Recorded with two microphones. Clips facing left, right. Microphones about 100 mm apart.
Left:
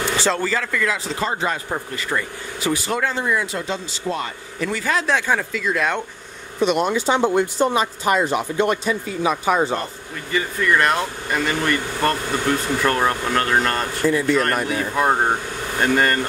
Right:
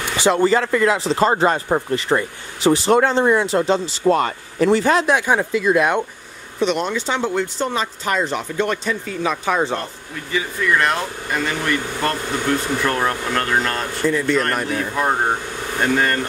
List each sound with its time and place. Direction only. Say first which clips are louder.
0.2 s speech: right 11 dB; 20° right (ahead or behind)
1.1 s speech: right 7 dB; 40° right (ahead or behind)
1.7 s speech: right 7 dB; 25° right (ahead or behind)
4.1 s speech: right 8 dB; 50° right (ahead or behind)
4.6 s speech: right 7 dB; 30° right (ahead or behind)
5.0 s speech: right 3 dB; 15° right (ahead or behind)
6.6 s speech: left 1 dB; 5° left (ahead or behind)